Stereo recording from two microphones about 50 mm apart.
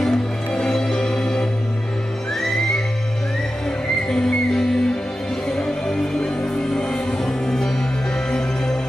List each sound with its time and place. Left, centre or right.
0.0 s music: centre
4.1 s music: centre